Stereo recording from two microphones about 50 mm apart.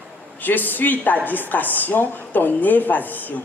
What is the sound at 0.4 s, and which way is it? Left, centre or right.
Speech, left.